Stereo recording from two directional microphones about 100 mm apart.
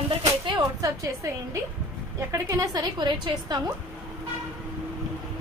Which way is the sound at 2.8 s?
45° right (ahead or behind).